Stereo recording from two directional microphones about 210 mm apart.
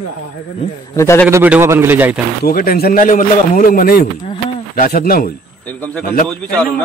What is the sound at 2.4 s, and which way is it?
A man's voice, 45° left (ahead or behind).